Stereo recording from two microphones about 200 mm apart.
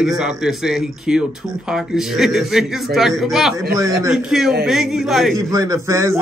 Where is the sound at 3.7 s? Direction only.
15° right (ahead or behind).